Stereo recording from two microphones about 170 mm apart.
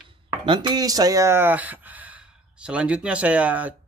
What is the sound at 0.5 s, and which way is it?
Speech, 25° right (ahead or behind).